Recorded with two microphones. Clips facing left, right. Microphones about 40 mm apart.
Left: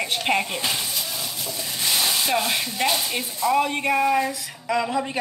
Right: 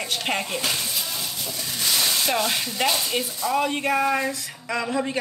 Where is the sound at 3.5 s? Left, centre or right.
Centre.